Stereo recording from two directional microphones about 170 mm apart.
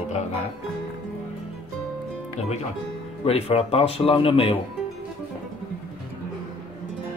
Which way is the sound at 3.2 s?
35° left (ahead or behind).